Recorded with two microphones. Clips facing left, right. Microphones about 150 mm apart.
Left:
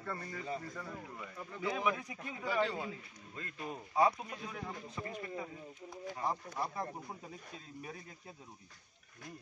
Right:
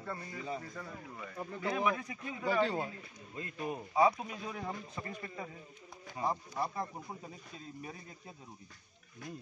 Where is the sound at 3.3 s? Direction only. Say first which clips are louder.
Right 4 dB; 15° right (ahead or behind).